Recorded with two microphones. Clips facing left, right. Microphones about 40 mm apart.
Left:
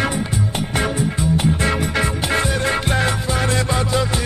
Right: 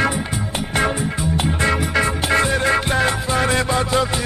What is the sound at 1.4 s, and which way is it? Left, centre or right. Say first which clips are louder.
Music: even; centre.